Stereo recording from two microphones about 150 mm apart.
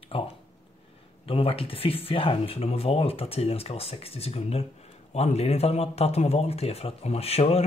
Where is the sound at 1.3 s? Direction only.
40° left (ahead or behind).